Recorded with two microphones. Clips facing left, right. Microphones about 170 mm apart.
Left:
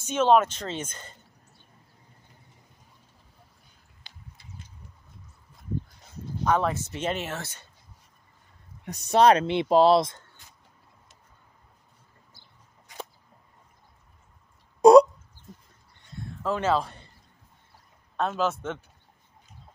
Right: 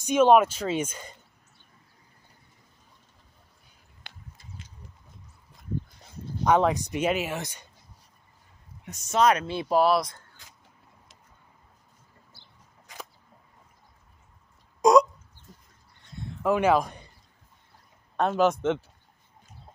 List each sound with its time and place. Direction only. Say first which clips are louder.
0.0 s speech: right 2 dB; 15° right (ahead or behind)
4.1 s a sound: right 4 dB; 60° right (ahead or behind)
6.4 s speech: right 3 dB; 15° right (ahead or behind)
8.8 s speech: left 3 dB; 35° left (ahead or behind)
12.9 s single-lens reflex camera: left 3 dB; 90° right
14.8 s a sound: left 5 dB; 30° left (ahead or behind)
16.4 s a man's voice: right 3 dB; 15° right (ahead or behind)
18.1 s speech: right 4 dB; 15° right (ahead or behind)